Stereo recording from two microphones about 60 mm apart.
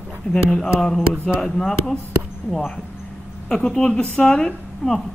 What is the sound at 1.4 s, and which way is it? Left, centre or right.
Speech, centre.